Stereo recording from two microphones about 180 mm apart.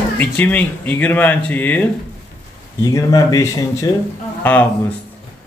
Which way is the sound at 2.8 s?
20° left (ahead or behind).